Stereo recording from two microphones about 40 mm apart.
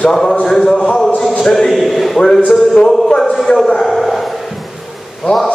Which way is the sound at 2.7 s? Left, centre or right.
Centre.